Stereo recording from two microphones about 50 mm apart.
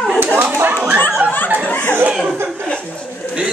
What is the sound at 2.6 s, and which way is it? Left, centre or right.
Speech, left.